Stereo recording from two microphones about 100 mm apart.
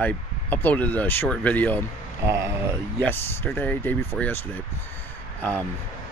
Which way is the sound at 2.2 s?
30° right (ahead or behind).